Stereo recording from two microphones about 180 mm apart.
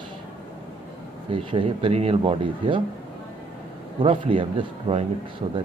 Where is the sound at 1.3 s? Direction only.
30° right (ahead or behind).